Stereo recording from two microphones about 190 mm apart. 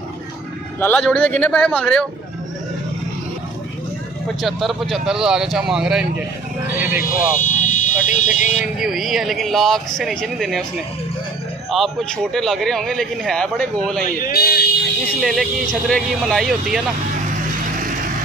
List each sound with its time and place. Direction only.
0.7 s speech: 10° left (ahead or behind)
4.4 s a man's voice: centre (ahead or behind)
7.1 s speech: 40° left (ahead or behind)
8.6 s a man's voice: 5° right (ahead or behind)
11.7 s a man's voice: centre (ahead or behind)
14.0 s a man's voice: 50° left (ahead or behind)
15.1 s a man's voice: centre (ahead or behind)
17.6 s vehicle: 45° right (ahead or behind)